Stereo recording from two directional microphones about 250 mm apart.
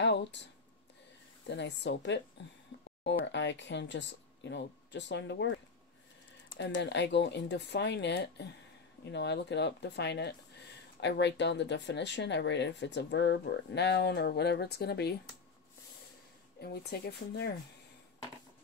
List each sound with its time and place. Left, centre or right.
0.0 s a sound: left
1.5 s speech: left
6.6 s speech: left
16.6 s speech: left